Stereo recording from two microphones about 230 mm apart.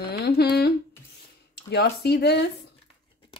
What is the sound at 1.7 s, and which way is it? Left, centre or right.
Speech, left.